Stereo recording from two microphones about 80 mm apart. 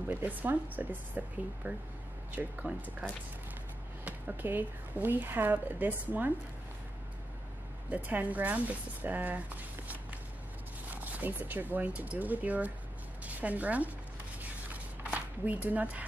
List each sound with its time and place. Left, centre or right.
0.1 s speech: right
7.9 s speech: right
15.0 s speech: centre